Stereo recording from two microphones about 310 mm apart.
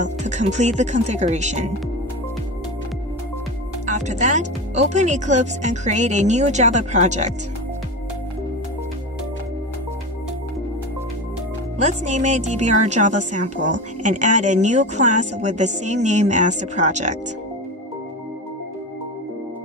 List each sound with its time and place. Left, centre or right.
0.0 s a woman's voice: right
3.8 s a woman's voice: right
11.8 s a woman's voice: right